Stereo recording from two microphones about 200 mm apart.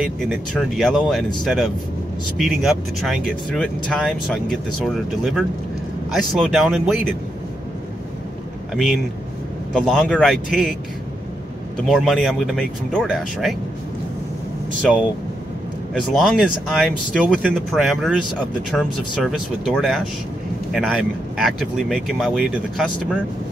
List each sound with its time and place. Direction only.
0.0 s speech: centre (ahead or behind)
8.7 s speech: centre (ahead or behind)
11.9 s speech: centre (ahead or behind)
14.8 s speech: 5° left (ahead or behind)